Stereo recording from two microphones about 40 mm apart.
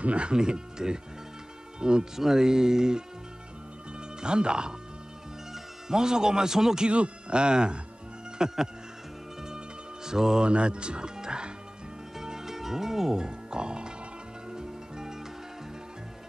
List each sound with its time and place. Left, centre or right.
0.0 s speech: right
2.1 s music: centre
4.2 s speech: right
6.9 s speech: right
8.4 s music: centre
10.0 s music: centre
10.4 s speech: right
12.2 s music: centre